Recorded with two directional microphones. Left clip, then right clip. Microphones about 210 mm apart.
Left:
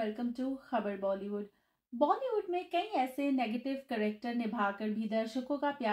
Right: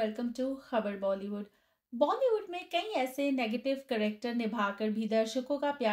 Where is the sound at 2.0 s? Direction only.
35° right (ahead or behind).